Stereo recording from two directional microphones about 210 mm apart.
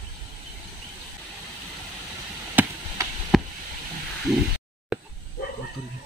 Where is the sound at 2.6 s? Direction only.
10° right (ahead or behind).